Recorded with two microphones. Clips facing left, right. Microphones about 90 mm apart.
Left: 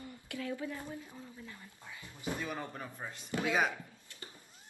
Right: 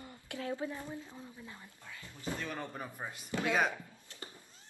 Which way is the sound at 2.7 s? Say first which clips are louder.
Right 1 dB; 10° right (ahead or behind).